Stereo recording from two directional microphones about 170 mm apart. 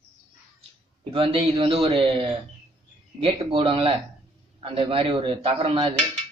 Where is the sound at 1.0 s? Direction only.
35° right (ahead or behind).